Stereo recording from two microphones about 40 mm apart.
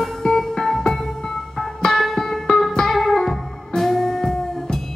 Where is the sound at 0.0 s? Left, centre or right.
Centre.